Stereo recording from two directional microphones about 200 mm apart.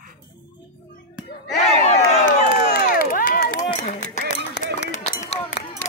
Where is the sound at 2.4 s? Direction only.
45° left (ahead or behind).